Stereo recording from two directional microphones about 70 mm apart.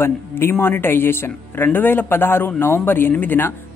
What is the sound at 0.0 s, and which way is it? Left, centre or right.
A woman's voice, left.